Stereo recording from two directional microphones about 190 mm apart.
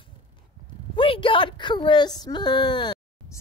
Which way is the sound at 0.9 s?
25° left (ahead or behind).